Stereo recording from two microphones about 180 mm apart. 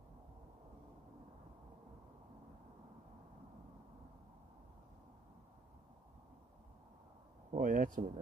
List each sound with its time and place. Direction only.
7.5 s speech: 50° right (ahead or behind)